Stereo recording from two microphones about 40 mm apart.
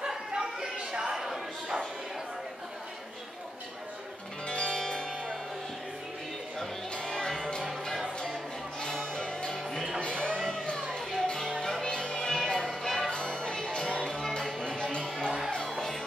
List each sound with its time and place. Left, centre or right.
0.1 s bow-wow: centre
4.5 s music: left
4.8 s music: centre
7.0 s music: centre
8.8 s music: left
10.0 s a sound: left
10.4 s music: centre
13.1 s music: left; by 16.0 s centre